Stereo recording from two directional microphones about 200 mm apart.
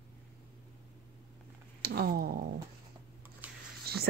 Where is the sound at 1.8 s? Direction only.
50° right (ahead or behind).